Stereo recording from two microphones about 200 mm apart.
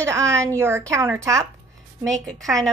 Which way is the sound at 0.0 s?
15° right (ahead or behind).